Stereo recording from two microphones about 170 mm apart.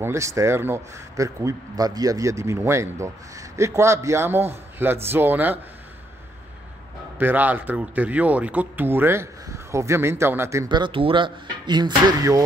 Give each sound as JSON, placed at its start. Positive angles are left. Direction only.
{"t": 0.0, "sound": "a man's voice", "side_deg": -15}
{"t": 7.2, "sound": "a man's voice", "side_deg": -10}